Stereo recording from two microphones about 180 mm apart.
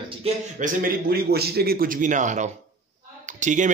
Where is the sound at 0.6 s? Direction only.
55° right (ahead or behind).